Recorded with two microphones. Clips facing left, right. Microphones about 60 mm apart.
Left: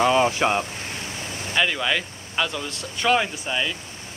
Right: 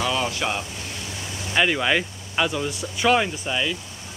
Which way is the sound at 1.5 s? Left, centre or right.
Centre.